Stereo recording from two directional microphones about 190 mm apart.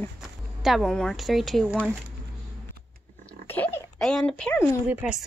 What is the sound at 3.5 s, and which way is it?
Oink, 10° left (ahead or behind).